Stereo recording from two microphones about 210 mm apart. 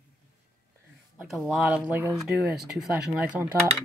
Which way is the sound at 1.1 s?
Centre (ahead or behind).